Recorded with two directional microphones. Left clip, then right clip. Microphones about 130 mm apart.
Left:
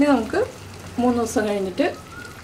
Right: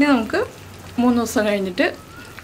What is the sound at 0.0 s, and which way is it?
A woman's voice, 20° right (ahead or behind).